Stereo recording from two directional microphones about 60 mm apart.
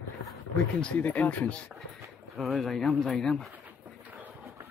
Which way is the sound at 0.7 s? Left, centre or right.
Centre.